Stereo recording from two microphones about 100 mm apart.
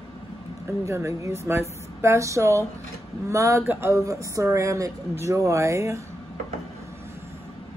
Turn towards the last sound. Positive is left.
turn(degrees=-30)  # may be behind; listen again after turning